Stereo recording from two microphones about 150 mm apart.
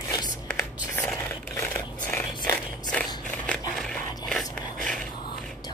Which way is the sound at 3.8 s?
5° left (ahead or behind).